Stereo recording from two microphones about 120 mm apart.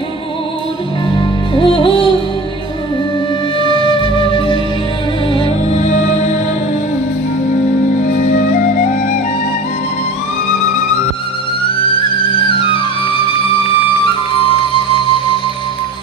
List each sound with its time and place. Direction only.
1.1 s music: 45° left (ahead or behind)
3.8 s flute: 45° left (ahead or behind)
5.7 s music: 75° left (ahead or behind)
8.0 s flute: 90° left
12.4 s flute: 45° left (ahead or behind)